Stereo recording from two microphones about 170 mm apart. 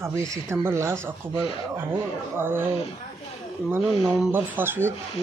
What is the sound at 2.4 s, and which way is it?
Speech, 15° right (ahead or behind).